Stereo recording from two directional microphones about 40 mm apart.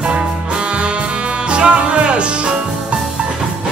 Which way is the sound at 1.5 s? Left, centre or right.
Right.